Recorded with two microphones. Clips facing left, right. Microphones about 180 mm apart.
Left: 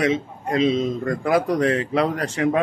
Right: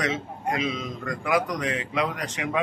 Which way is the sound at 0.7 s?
30° left (ahead or behind).